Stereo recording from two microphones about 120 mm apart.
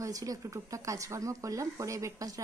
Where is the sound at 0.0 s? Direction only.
30° right (ahead or behind).